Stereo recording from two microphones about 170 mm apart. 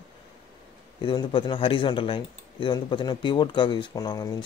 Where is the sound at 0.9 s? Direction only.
30° left (ahead or behind).